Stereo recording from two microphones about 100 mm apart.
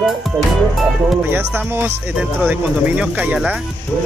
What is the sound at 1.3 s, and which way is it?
Speech, 20° right (ahead or behind).